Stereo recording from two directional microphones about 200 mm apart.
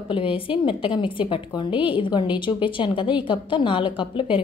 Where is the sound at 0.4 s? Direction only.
25° left (ahead or behind).